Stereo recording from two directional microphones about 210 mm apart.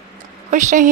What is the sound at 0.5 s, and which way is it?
Speech, 40° right (ahead or behind).